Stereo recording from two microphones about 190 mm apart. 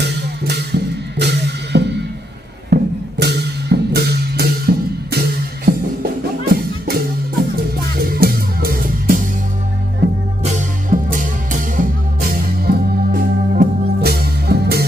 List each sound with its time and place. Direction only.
0.0 s music: 60° right (ahead or behind)
10.4 s music: 45° right (ahead or behind)